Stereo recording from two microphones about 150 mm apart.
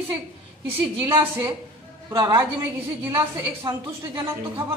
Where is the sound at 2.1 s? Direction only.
25° right (ahead or behind).